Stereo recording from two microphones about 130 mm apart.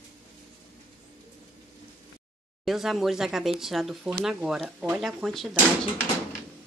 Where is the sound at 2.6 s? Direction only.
Centre (ahead or behind).